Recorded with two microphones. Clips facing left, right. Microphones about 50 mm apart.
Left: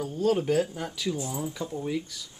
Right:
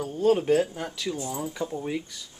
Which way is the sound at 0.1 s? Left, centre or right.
Centre.